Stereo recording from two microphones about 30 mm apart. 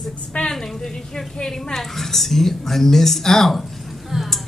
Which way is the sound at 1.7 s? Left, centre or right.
Centre.